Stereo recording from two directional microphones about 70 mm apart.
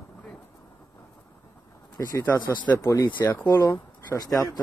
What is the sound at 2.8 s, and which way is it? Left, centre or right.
Speech, left.